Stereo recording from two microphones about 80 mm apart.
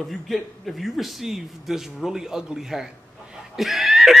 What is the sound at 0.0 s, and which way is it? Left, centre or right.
A man's voice, centre.